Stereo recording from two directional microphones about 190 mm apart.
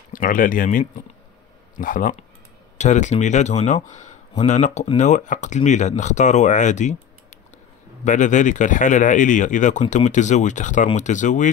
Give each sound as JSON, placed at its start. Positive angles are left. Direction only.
{"t": 0.1, "sound": "speech", "side_deg": 45}
{"t": 8.0, "sound": "speech", "side_deg": 40}